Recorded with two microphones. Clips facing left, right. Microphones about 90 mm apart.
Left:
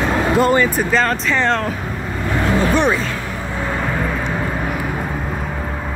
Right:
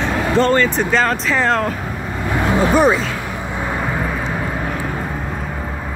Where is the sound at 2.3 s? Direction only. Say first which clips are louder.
Right 1 dB; 15° right (ahead or behind).